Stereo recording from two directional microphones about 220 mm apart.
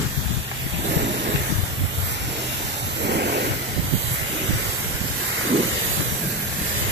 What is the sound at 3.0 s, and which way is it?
Vehicle, 50° right (ahead or behind).